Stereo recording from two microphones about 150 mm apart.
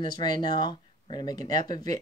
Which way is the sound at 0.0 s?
30° left (ahead or behind).